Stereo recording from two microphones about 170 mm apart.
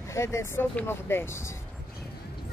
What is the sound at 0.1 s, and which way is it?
Speech, 15° left (ahead or behind).